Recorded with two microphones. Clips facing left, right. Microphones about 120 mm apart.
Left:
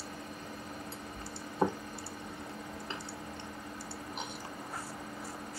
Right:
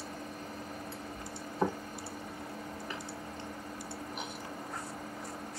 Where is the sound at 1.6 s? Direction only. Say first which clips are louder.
Left 1 dB; 15° left (ahead or behind).